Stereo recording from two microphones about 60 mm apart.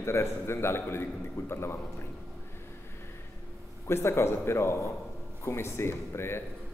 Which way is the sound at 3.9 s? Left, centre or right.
Left.